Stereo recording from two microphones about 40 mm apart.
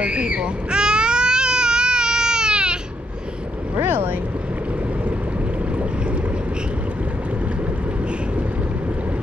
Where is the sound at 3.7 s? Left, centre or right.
Right.